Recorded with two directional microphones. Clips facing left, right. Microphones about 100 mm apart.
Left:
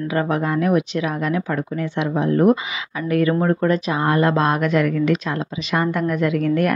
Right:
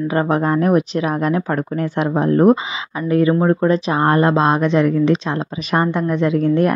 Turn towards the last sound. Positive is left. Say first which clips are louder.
# right 3 dB
turn(degrees=-30)  # may be behind; listen again after turning